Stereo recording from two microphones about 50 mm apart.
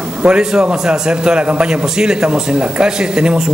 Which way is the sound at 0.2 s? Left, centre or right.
Centre.